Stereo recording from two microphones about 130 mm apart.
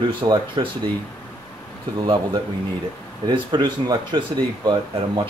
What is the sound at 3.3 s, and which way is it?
Speech, 35° right (ahead or behind).